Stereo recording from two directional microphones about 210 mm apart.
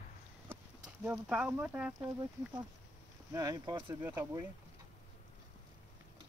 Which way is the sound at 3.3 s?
15° right (ahead or behind).